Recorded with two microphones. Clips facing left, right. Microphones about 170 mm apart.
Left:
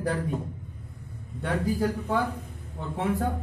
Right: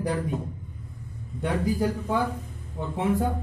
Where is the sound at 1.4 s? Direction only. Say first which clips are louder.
Right 1 dB; 15° right (ahead or behind).